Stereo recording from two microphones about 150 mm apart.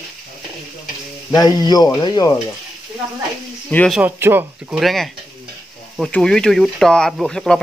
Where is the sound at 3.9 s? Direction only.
15° right (ahead or behind).